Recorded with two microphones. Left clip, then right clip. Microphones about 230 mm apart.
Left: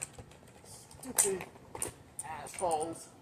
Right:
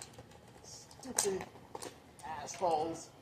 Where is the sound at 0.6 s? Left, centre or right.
Centre.